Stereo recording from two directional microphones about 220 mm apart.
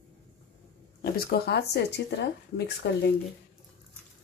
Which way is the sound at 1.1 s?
45° left (ahead or behind).